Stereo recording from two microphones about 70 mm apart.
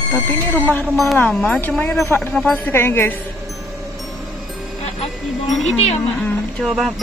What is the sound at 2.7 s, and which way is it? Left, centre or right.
Speech, left.